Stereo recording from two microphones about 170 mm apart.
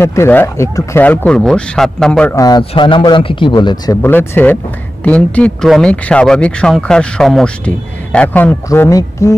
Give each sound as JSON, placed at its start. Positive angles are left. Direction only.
{"t": 0.0, "sound": "speech", "side_deg": 15}
{"t": 2.3, "sound": "a man's voice", "side_deg": 20}
{"t": 4.0, "sound": "speech", "side_deg": 15}